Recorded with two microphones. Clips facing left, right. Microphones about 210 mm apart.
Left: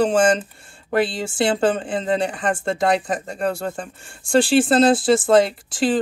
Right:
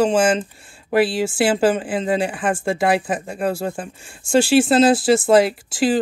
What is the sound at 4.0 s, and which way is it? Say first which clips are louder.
A woman's voice: right 1 dB; centre (ahead or behind).